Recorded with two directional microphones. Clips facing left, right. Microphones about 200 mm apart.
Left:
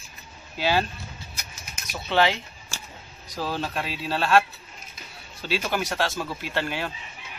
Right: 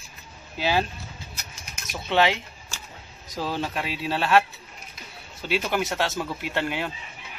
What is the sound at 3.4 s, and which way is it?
Speech, 15° right (ahead or behind).